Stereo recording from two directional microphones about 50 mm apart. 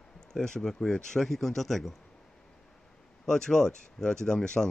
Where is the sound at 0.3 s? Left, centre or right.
Centre.